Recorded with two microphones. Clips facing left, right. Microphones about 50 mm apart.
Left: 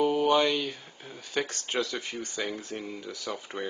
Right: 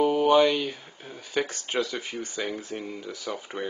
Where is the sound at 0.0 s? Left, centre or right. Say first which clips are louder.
Right 4 dB; centre.